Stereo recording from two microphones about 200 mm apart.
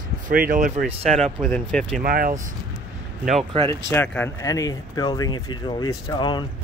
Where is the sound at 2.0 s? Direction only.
45° right (ahead or behind).